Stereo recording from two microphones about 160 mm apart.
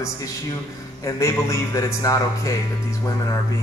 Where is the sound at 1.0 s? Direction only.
20° left (ahead or behind).